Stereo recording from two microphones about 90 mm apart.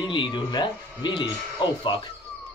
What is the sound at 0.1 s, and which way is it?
Speech, 60° left (ahead or behind).